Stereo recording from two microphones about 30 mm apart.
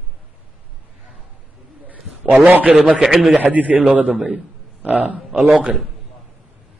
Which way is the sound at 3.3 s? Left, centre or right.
Right.